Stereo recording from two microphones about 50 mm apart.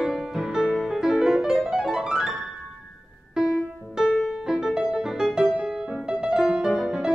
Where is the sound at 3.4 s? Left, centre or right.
Centre.